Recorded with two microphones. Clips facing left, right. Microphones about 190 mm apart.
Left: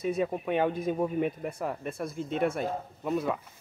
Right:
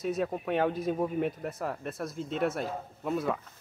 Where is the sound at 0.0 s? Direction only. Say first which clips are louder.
Left 2 dB; centre (ahead or behind).